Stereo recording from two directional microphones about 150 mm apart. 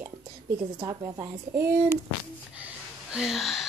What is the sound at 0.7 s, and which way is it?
A woman's voice, 25° right (ahead or behind).